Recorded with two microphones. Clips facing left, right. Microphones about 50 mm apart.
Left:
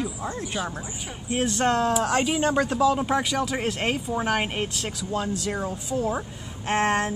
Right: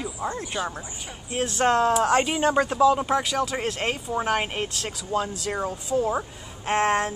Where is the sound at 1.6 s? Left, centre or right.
Centre.